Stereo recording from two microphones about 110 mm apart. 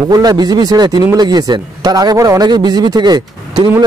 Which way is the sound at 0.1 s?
35° right (ahead or behind).